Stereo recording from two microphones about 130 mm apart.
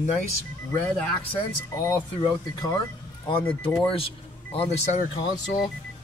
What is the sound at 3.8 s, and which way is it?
Speech, 45° left (ahead or behind).